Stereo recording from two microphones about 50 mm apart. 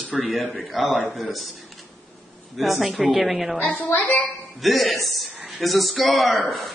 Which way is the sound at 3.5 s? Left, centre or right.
Left.